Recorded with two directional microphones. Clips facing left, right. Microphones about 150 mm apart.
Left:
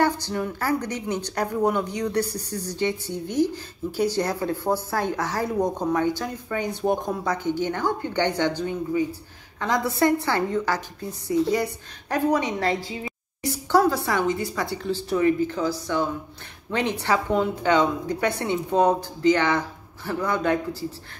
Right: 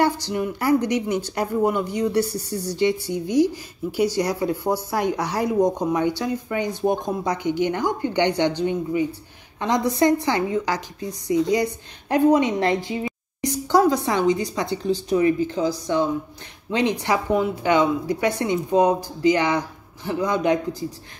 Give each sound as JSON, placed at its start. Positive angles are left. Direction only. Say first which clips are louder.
{"t": 0.3, "sound": "a woman's voice", "louder": "right 5 dB", "side_deg": -15}
{"t": 9.6, "sound": "a woman's voice", "louder": "right 2 dB", "side_deg": -20}